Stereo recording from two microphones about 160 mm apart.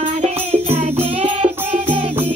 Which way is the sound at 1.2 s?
40° right (ahead or behind).